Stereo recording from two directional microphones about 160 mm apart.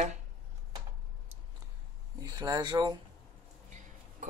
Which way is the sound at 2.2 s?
25° right (ahead or behind).